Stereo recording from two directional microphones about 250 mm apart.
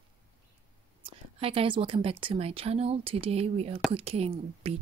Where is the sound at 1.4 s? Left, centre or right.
Right.